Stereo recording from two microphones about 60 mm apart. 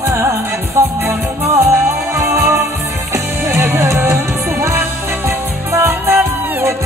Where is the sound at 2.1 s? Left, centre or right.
Right.